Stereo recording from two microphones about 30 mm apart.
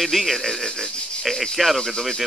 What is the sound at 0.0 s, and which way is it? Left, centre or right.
A man's voice, centre.